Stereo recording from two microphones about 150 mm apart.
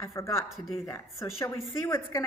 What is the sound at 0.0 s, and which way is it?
A woman's voice, 20° left (ahead or behind).